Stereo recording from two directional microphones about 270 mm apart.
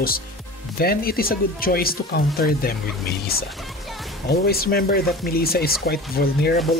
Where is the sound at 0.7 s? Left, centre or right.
Left.